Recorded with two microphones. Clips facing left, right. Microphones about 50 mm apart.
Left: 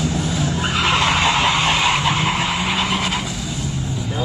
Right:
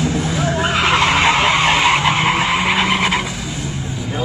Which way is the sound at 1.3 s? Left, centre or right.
Right.